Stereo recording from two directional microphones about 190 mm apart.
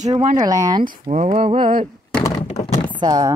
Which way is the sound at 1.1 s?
35° right (ahead or behind).